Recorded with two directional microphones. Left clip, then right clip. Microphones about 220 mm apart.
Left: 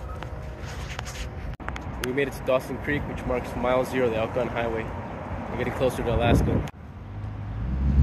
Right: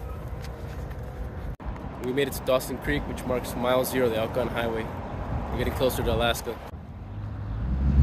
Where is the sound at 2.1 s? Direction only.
10° right (ahead or behind).